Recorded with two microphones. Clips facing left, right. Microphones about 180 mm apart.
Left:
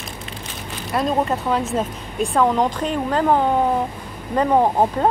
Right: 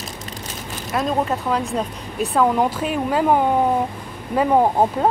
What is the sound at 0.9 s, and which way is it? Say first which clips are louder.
Speech: left 1 dB; centre (ahead or behind).